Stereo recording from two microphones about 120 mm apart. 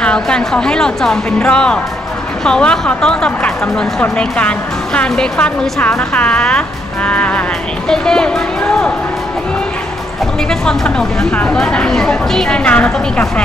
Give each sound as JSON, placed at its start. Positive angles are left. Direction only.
{"t": 0.0, "sound": "speech", "side_deg": 5}
{"t": 7.1, "sound": "music", "side_deg": 10}
{"t": 7.9, "sound": "speech", "side_deg": 5}
{"t": 10.5, "sound": "speech", "side_deg": 5}